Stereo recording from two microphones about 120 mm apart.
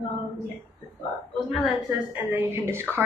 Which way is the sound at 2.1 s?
15° right (ahead or behind).